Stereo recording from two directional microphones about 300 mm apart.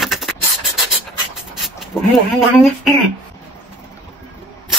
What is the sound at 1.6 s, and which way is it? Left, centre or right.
Speech, centre.